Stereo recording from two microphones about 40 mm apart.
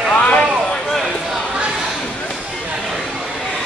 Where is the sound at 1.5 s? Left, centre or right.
Centre.